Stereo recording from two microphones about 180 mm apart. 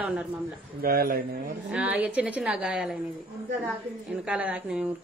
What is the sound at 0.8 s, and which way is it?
Speech, 55° right (ahead or behind).